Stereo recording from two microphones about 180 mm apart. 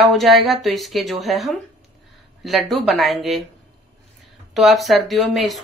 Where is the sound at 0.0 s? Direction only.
Centre (ahead or behind).